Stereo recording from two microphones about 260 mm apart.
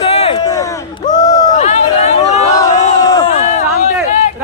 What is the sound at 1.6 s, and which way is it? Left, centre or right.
Chatter, left.